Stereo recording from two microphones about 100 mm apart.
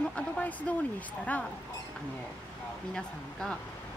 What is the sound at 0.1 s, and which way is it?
Speech, 15° left (ahead or behind).